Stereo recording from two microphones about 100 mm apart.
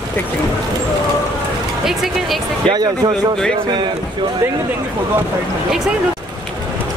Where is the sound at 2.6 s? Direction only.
45° right (ahead or behind).